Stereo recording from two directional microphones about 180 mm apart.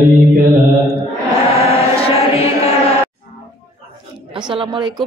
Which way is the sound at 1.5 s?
35° left (ahead or behind).